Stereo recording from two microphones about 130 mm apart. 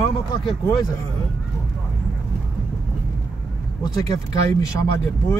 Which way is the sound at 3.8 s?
30° left (ahead or behind).